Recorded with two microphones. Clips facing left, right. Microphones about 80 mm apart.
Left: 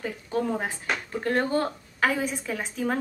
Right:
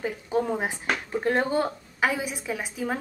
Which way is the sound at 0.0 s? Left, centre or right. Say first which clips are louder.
Right 2 dB; centre.